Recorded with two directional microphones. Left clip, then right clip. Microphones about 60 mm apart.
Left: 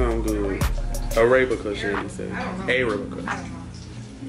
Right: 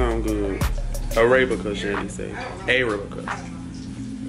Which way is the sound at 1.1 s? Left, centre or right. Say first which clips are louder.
Even; centre.